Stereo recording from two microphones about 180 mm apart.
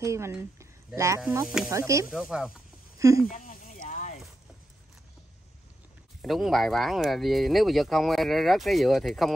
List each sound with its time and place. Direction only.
0.0 s speech: 15° right (ahead or behind)
1.3 s speech: 5° right (ahead or behind)
1.7 s sizzle: 15° right (ahead or behind)
2.0 s speech: centre (ahead or behind)
3.0 s speech: 15° right (ahead or behind)
3.3 s a sound: 50° left (ahead or behind)
6.2 s speech: centre (ahead or behind)